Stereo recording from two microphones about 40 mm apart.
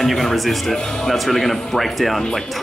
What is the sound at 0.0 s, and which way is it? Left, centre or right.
Speech, centre.